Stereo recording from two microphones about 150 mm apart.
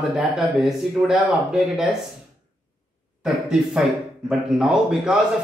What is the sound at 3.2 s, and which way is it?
Speech, 5° right (ahead or behind).